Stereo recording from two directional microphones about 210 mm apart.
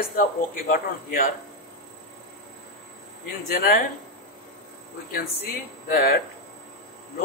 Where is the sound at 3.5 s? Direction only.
45° left (ahead or behind).